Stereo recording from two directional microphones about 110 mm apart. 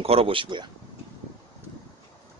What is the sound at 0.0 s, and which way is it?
Speech, 60° right (ahead or behind).